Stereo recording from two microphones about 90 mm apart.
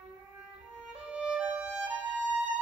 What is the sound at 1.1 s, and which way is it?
Music, 10° right (ahead or behind).